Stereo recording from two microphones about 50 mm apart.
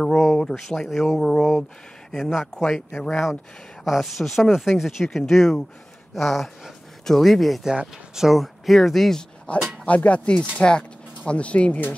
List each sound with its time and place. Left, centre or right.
0.1 s speech: centre
3.8 s speech: centre
7.6 s speech: centre
9.5 s speech: left